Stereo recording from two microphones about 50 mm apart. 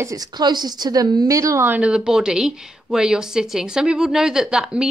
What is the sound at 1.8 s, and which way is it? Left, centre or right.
A woman's voice, centre.